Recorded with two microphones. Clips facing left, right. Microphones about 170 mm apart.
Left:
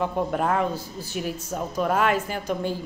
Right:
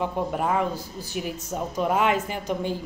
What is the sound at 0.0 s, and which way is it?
A woman's voice, 10° right (ahead or behind).